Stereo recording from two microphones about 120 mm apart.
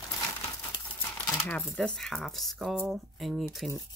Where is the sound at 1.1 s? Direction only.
10° left (ahead or behind).